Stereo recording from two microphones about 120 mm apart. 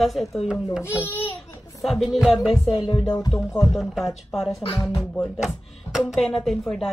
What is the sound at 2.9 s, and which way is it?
Speech, 35° left (ahead or behind).